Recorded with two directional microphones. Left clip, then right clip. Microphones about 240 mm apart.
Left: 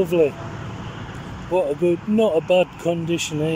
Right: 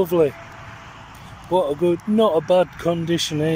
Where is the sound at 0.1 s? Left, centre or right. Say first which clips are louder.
Even; centre.